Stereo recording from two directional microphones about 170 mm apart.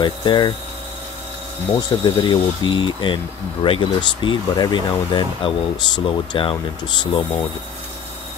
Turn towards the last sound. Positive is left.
turn(degrees=30)  # may be behind; listen again after turning